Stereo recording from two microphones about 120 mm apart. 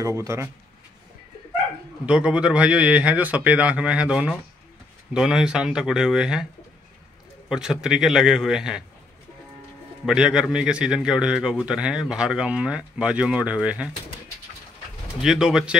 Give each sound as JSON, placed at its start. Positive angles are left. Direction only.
{"t": 0.0, "sound": "speech", "side_deg": -25}
{"t": 2.0, "sound": "a man's voice", "side_deg": -10}
{"t": 7.4, "sound": "a man's voice", "side_deg": -5}
{"t": 10.0, "sound": "a man's voice", "side_deg": -5}
{"t": 15.2, "sound": "a man's voice", "side_deg": -5}